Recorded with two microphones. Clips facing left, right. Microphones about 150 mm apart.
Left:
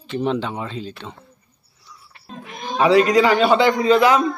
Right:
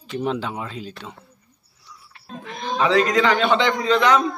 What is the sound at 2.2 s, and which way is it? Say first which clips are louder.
A man's voice: right 2 dB; 15° left (ahead or behind).